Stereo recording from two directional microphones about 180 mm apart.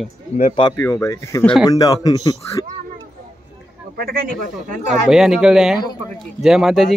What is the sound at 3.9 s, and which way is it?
Speech, 55° right (ahead or behind).